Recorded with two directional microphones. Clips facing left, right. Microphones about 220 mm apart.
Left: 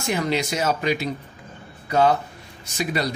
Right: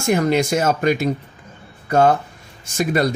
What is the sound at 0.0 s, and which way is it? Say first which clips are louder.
A man's voice: right 6 dB; 50° right (ahead or behind).